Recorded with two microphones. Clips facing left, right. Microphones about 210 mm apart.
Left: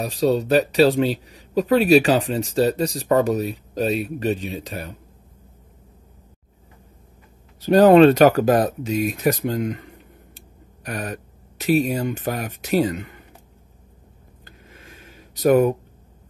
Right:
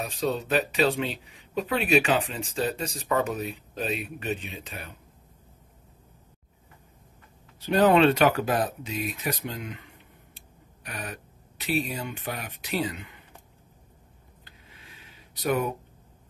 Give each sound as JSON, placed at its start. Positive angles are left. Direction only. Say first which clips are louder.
{"t": 0.0, "sound": "speech", "louder": "left 8 dB", "side_deg": 40}
{"t": 7.6, "sound": "speech", "louder": "left 8 dB", "side_deg": 40}
{"t": 14.4, "sound": "a sound", "louder": "left 8 dB", "side_deg": 45}